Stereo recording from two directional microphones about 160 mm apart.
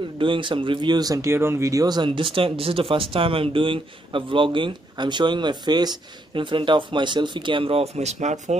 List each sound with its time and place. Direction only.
0.2 s speech: 30° right (ahead or behind)